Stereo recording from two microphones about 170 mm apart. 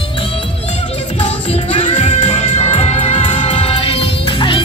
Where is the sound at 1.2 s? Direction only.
35° left (ahead or behind).